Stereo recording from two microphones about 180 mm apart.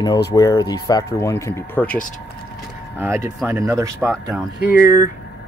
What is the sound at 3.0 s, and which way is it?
Speech, 15° right (ahead or behind).